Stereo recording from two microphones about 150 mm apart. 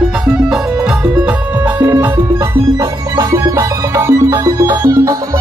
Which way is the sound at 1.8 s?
15° right (ahead or behind).